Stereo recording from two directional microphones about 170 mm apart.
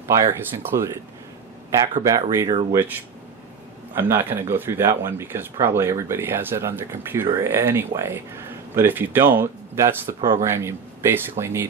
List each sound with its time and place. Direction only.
0.1 s speech: 15° right (ahead or behind)
2.0 s speech: 20° right (ahead or behind)
3.9 s speech: 15° right (ahead or behind)